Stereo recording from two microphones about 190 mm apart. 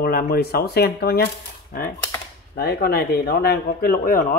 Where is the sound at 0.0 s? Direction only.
55° left (ahead or behind).